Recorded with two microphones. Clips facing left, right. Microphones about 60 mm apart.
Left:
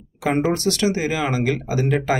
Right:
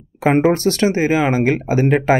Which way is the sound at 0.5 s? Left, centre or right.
Right.